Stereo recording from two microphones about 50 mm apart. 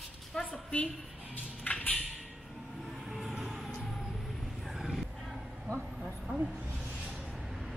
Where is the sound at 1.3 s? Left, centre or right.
Left.